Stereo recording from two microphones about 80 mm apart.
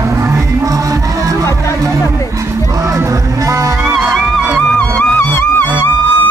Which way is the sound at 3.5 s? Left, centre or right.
Right.